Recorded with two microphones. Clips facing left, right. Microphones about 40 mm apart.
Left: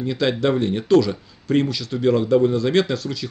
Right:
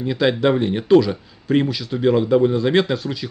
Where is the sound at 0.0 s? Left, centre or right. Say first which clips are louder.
Right 2 dB; centre.